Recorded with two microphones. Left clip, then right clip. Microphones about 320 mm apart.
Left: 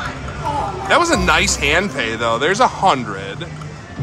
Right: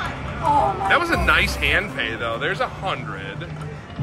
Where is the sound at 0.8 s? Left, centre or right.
Centre.